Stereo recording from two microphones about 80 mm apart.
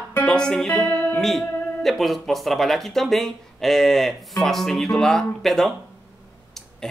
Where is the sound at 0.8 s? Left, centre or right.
Left.